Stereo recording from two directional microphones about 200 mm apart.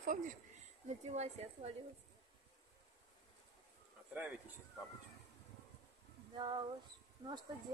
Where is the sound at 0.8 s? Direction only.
35° right (ahead or behind).